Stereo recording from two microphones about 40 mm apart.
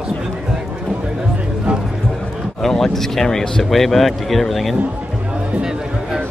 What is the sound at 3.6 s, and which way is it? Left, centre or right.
Speech, centre.